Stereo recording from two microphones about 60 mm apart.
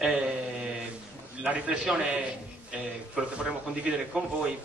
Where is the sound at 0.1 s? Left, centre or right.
Right.